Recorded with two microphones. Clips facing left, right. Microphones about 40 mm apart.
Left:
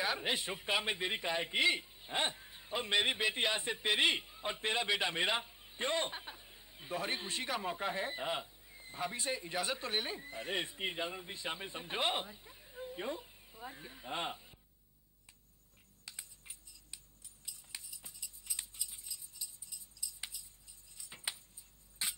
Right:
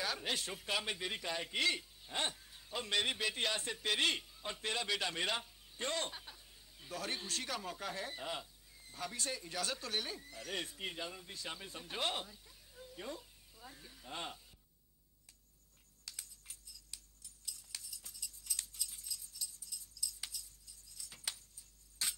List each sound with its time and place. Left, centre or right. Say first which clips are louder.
0.0 s a man's voice: left 4 dB; left
16.1 s a sound: left 1 dB; left
22.0 s dog: left 1 dB; centre